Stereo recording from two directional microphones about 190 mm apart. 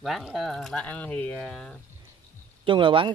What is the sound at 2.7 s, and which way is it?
Speech, 25° right (ahead or behind).